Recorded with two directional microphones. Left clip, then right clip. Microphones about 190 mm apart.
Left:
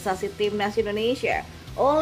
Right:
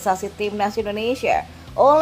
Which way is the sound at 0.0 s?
10° right (ahead or behind).